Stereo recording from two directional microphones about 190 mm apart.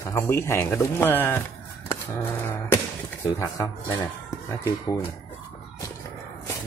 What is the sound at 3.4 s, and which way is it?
Speech, 20° left (ahead or behind).